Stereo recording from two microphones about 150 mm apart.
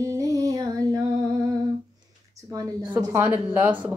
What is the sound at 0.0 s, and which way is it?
Female singing, 20° right (ahead or behind).